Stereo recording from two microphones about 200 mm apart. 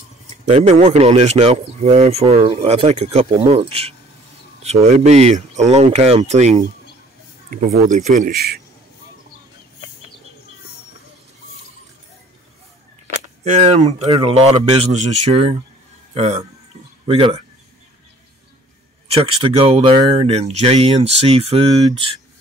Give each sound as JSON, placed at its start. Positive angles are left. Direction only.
{"t": 0.5, "sound": "speech", "side_deg": -35}
{"t": 13.0, "sound": "speech", "side_deg": -35}
{"t": 19.0, "sound": "speech", "side_deg": -30}